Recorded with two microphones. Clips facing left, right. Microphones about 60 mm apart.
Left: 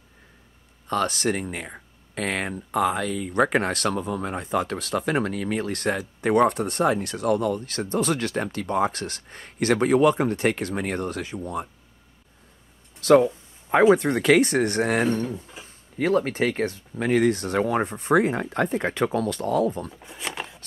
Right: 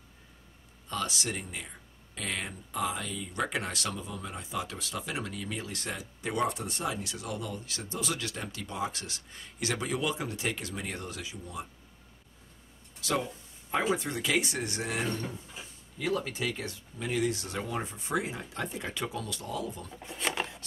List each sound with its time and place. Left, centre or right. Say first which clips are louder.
0.8 s speech: left 10 dB; left
13.0 s speech: left 15 dB; left
19.9 s speech: even; centre